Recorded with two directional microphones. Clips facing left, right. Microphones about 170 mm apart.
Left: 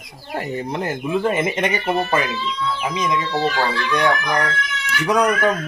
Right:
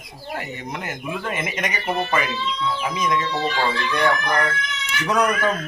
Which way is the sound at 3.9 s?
15° left (ahead or behind).